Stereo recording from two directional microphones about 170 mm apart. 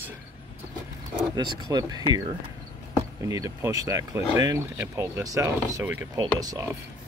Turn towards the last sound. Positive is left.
turn(degrees=-20)  # may be behind; listen again after turning